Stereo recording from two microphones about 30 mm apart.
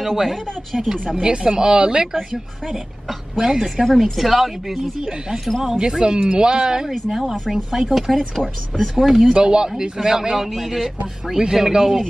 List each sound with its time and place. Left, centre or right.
0.0 s a woman's voice: centre
1.2 s speech: right
2.7 s a woman's voice: centre
3.8 s a woman's voice: centre
5.8 s speech: right
7.1 s a woman's voice: centre
9.3 s a woman's voice: right; by 10.9 s centre
11.3 s a woman's voice: centre